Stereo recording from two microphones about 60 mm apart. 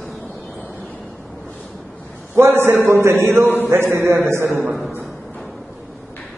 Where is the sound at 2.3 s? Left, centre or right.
Right.